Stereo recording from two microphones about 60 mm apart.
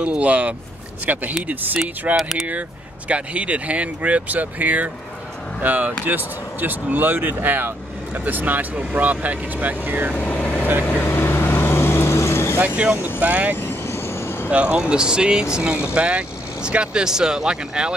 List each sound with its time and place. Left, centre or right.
0.0 s speech: right
2.1 s speech: centre
3.1 s speech: right
10.1 s vehicle: left
10.9 s vehicle: left
12.5 s speech: right
13.6 s vehicle: left
14.5 s speech: right